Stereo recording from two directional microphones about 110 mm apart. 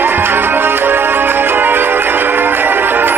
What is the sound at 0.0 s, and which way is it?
Music, 20° right (ahead or behind).